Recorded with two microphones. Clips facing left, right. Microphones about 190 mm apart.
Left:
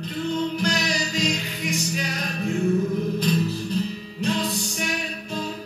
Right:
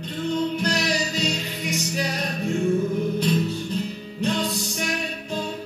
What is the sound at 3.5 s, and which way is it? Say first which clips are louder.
Music: left 1 dB; 35° left (ahead or behind).